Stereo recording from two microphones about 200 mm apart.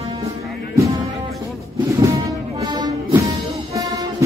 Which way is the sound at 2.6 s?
20° right (ahead or behind).